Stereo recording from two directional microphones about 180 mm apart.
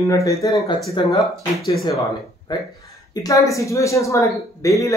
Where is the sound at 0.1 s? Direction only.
20° left (ahead or behind).